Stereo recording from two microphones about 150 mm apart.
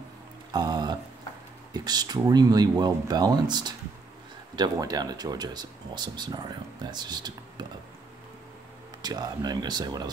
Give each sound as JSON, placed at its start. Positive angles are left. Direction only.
{"t": 0.5, "sound": "a sound", "side_deg": -30}
{"t": 1.7, "sound": "speech", "side_deg": -25}
{"t": 9.0, "sound": "speech", "side_deg": -25}